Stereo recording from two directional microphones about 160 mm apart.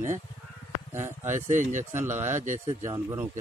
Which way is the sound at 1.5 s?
50° right (ahead or behind).